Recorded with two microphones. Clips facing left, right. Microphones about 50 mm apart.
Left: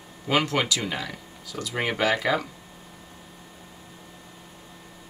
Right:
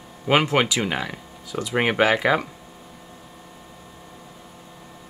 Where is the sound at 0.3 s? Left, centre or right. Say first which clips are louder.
Right 4 dB; right.